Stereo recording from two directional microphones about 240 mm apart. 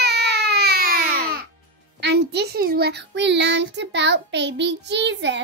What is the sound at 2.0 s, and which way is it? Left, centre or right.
Speech, right.